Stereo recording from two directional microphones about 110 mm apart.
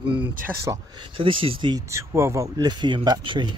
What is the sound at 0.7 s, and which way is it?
Speech, 30° right (ahead or behind).